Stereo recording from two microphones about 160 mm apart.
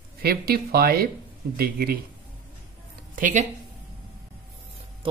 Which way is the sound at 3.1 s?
55° right (ahead or behind).